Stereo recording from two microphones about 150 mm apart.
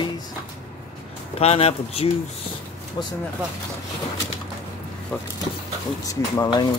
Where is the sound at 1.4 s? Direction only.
45° left (ahead or behind).